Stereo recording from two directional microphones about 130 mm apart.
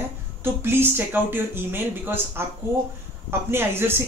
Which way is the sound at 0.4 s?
15° right (ahead or behind).